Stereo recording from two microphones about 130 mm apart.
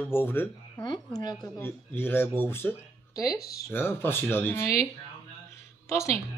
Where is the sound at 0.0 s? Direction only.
15° left (ahead or behind).